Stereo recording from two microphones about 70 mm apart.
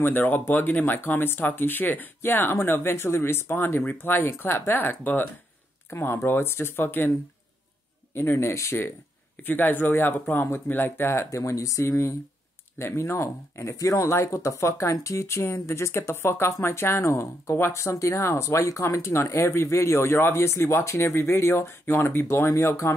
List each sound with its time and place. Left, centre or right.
0.0 s speech: left
8.1 s speech: left
9.4 s speech: left
11.2 s speech: left
22.5 s speech: left